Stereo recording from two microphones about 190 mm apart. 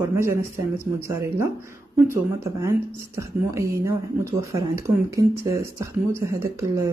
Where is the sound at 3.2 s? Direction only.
15° right (ahead or behind).